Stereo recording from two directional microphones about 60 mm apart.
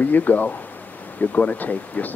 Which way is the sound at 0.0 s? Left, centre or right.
Left.